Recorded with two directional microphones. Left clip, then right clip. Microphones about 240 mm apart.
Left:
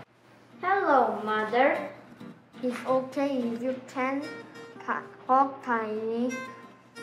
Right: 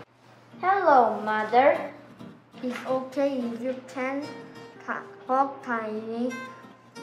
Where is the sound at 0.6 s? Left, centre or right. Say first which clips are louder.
Right 4 dB; right.